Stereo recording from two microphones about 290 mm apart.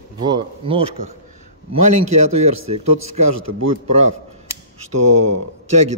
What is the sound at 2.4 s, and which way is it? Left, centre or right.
Speech, right.